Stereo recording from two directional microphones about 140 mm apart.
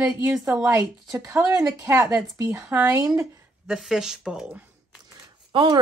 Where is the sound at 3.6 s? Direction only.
5° right (ahead or behind).